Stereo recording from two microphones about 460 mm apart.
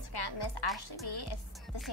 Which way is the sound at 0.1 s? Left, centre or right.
Left.